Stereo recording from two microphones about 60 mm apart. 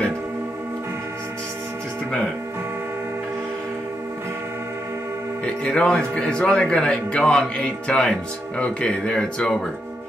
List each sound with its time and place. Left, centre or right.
5.4 s speech: centre